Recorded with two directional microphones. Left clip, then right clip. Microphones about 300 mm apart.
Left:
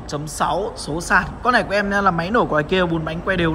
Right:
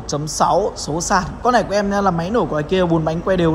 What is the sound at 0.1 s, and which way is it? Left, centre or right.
A man's voice, centre.